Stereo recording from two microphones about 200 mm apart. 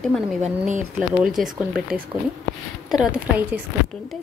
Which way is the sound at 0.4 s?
40° right (ahead or behind).